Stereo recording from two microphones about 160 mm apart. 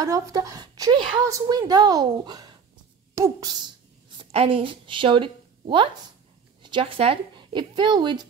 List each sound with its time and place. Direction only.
0.0 s a woman's voice: 20° right (ahead or behind)